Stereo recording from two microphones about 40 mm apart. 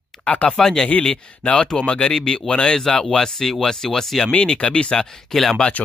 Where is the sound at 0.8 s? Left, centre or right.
Left.